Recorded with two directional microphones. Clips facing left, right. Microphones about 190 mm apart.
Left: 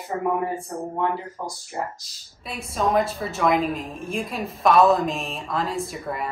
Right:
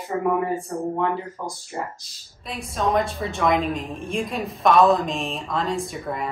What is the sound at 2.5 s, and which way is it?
A woman's voice, centre (ahead or behind).